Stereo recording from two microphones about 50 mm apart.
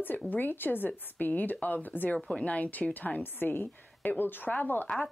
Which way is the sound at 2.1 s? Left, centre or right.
Left.